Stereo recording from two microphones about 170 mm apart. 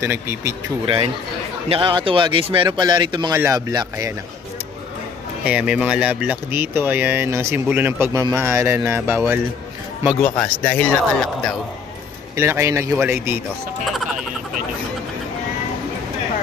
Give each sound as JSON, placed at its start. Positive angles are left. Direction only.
{"t": 0.0, "sound": "speech", "side_deg": -15}
{"t": 0.8, "sound": "a man's voice", "side_deg": -30}
{"t": 5.4, "sound": "speech", "side_deg": -5}
{"t": 10.2, "sound": "a man's voice", "side_deg": 5}
{"t": 12.4, "sound": "speech", "side_deg": -15}